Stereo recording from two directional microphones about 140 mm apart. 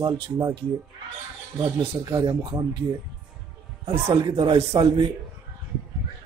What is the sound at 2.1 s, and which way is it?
Speech, 25° right (ahead or behind).